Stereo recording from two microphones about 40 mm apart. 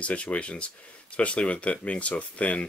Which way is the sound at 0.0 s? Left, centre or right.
Left.